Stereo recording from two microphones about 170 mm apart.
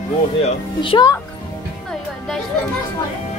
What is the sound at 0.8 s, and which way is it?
Speech, 25° left (ahead or behind).